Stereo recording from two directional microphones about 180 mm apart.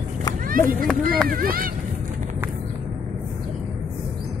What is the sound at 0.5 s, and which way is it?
Speech, 50° right (ahead or behind).